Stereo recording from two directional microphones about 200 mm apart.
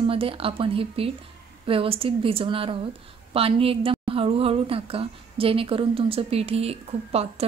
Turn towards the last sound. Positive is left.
turn(degrees=-30)  # may be behind; listen again after turning